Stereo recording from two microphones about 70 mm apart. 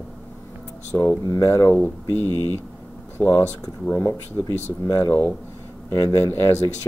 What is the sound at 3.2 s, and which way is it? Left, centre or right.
Speech, centre.